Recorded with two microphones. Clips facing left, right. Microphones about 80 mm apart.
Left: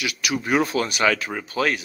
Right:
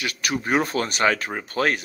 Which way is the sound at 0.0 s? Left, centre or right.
Right.